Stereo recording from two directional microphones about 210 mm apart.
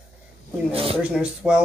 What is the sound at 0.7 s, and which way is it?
Speech, 25° right (ahead or behind).